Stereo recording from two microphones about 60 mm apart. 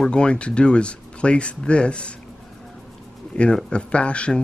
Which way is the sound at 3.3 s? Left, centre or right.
Centre.